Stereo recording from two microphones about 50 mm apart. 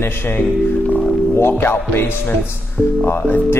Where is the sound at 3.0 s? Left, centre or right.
Left.